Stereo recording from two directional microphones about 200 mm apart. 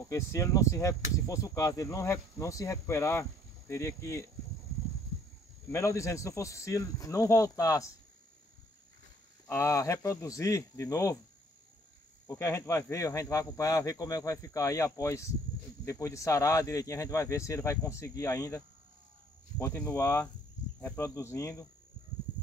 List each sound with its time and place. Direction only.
0.1 s speech: 15° left (ahead or behind)
5.7 s speech: 15° left (ahead or behind)
9.5 s speech: 15° left (ahead or behind)
12.3 s speech: 15° left (ahead or behind)
19.6 s speech: 15° left (ahead or behind)